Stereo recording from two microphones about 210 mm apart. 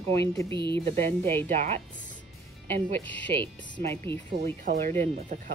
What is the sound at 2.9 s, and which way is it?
Speech, 10° left (ahead or behind).